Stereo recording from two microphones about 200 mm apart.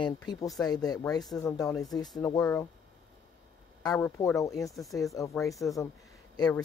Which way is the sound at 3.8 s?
15° left (ahead or behind).